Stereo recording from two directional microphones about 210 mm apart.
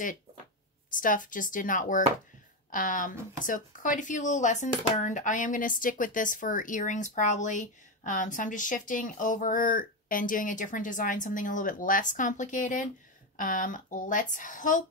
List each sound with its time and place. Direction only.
0.8 s speech: 40° left (ahead or behind)